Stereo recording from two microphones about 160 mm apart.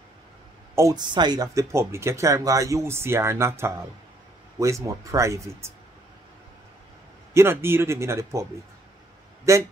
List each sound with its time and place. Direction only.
0.7 s speech: 25° right (ahead or behind)
7.3 s speech: 15° right (ahead or behind)
9.5 s speech: 20° right (ahead or behind)